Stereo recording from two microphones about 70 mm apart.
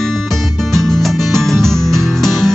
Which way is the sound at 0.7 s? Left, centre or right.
Centre.